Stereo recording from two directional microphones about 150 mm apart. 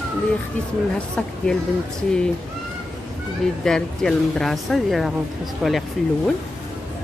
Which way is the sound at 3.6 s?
5° left (ahead or behind).